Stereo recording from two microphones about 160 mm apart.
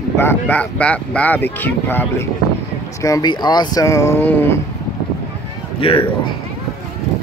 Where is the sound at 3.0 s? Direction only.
25° left (ahead or behind).